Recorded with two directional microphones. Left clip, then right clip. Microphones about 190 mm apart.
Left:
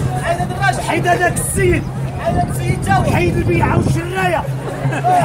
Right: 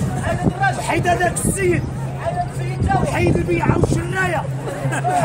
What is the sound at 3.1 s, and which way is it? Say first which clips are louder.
Speech: left 2 dB; 10° right (ahead or behind).